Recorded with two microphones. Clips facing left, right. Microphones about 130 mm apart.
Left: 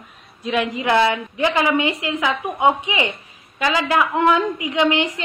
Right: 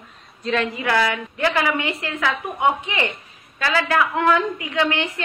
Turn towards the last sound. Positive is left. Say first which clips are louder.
# left 4 dB
turn(degrees=15)  # may be behind; listen again after turning